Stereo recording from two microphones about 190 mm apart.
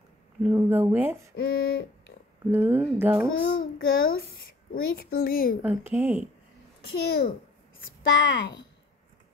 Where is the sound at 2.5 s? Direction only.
10° right (ahead or behind).